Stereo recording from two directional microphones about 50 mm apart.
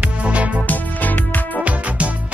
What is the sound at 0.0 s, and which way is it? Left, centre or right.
Music, right.